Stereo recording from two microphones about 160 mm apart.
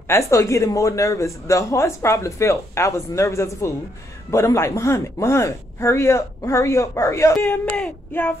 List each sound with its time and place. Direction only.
0.1 s a man's voice: 20° left (ahead or behind)